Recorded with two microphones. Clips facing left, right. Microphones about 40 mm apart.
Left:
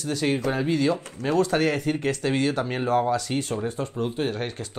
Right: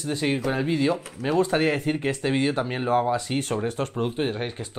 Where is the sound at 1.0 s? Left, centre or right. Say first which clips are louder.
Even; centre.